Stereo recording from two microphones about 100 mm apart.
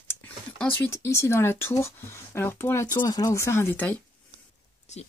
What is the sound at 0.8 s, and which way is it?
Speech, 25° left (ahead or behind).